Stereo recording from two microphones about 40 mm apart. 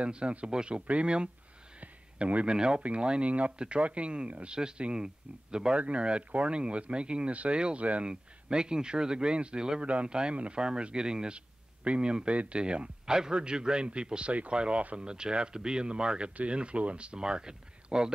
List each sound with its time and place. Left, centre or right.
0.0 s a man's voice: right
1.8 s a sound: right
2.4 s a man's voice: right
8.1 s a man's voice: right
15.0 s a man's voice: right